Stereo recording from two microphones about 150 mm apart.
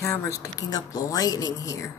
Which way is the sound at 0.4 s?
25° left (ahead or behind).